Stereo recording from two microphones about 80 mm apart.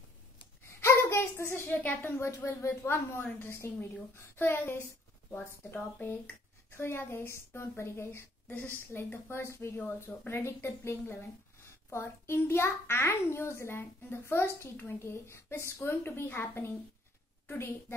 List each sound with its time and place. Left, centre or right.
0.7 s a sound: left
2.3 s a child's voice: left
2.8 s a woman's voice: left